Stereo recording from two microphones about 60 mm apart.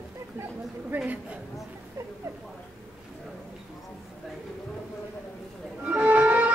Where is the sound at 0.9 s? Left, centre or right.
Right.